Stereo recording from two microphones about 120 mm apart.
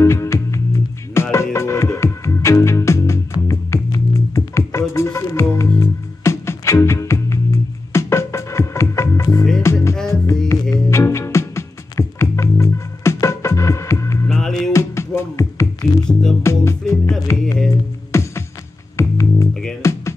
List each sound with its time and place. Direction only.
0.0 s music: 25° left (ahead or behind)
14.3 s music: centre (ahead or behind)
14.7 s music: 20° left (ahead or behind)
16.1 s music: 5° left (ahead or behind)
16.4 s music: 20° left (ahead or behind)